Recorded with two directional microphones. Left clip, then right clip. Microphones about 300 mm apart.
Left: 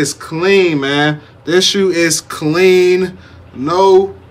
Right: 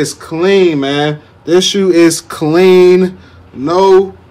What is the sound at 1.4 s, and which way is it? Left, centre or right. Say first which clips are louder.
Speech: right 2 dB; centre.